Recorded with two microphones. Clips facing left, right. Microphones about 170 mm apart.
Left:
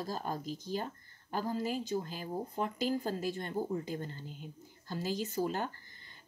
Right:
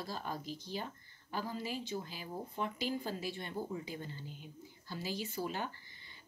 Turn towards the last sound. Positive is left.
turn(degrees=45)  # may be behind; listen again after turning